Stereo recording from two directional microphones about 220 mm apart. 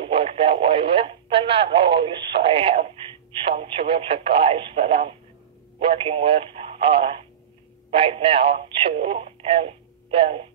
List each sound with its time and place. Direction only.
0.0 s radio: 25° right (ahead or behind)
3.4 s speech: 25° right (ahead or behind)